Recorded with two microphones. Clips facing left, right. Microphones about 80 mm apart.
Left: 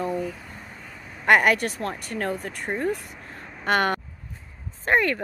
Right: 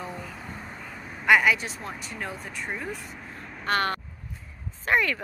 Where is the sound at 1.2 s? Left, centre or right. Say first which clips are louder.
Left 2 dB; left.